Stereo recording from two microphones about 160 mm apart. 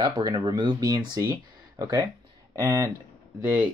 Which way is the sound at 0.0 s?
25° right (ahead or behind).